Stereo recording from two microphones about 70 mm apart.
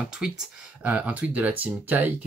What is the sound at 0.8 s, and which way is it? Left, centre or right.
Speech, right.